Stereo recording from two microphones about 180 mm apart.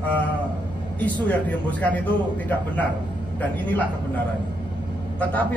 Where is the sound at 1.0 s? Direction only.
10° left (ahead or behind).